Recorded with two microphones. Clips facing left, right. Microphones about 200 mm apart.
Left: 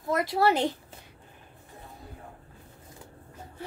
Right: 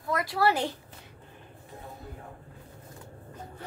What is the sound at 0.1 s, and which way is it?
Speech, 25° left (ahead or behind).